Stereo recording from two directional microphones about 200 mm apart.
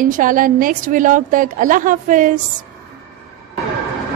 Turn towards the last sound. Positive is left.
turn(degrees=-40)  # may be behind; listen again after turning